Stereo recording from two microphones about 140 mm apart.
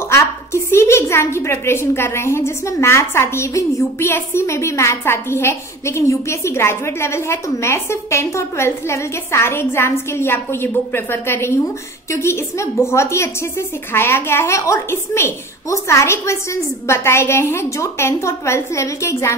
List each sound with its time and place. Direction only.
0.1 s a woman's voice: 20° left (ahead or behind)